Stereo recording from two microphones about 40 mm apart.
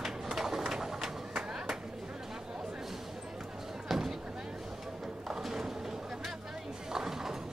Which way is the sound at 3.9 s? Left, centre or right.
Centre.